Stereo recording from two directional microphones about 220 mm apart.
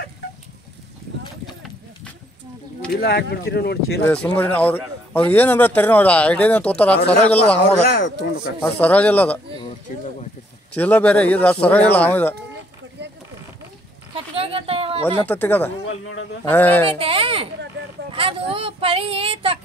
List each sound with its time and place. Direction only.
2.9 s speech: 45° left (ahead or behind)
4.0 s a man's voice: 5° left (ahead or behind)
8.6 s speech: 5° left (ahead or behind)
10.7 s speech: 5° left (ahead or behind)
14.1 s a sound: 25° right (ahead or behind)
15.2 s speech: 10° left (ahead or behind)
17.0 s a sound: 25° right (ahead or behind)
18.1 s speech: 25° right (ahead or behind)